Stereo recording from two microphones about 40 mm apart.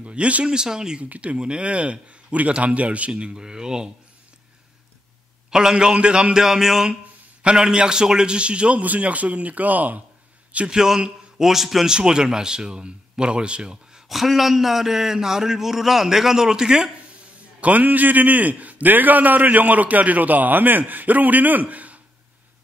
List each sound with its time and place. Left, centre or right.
0.0 s speech: right
0.5 s a man's voice: centre
1.0 s a man's voice: right; by 3.9 s centre
5.5 s a man's voice: centre
6.4 s a man's voice: centre; by 8.8 s right
8.8 s speech: right
10.7 s a man's voice: centre
11.9 s a man's voice: centre
14.0 s a man's voice: centre
17.6 s a man's voice: right